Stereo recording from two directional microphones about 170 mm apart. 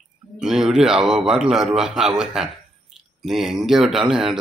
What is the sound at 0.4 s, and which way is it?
A man's voice, 5° right (ahead or behind).